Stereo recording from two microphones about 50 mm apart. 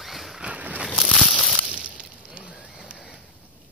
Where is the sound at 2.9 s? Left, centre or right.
Right.